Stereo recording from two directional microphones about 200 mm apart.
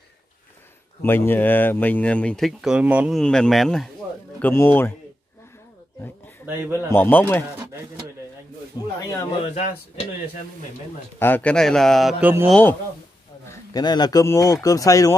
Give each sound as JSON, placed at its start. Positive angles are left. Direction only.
{"t": 1.0, "sound": "speech", "side_deg": 10}
{"t": 6.4, "sound": "speech", "side_deg": -10}
{"t": 6.9, "sound": "speech", "side_deg": 10}
{"t": 8.8, "sound": "speech", "side_deg": 20}
{"t": 9.5, "sound": "speech", "side_deg": 40}
{"t": 11.1, "sound": "speech", "side_deg": 10}
{"t": 13.5, "sound": "speech", "side_deg": 20}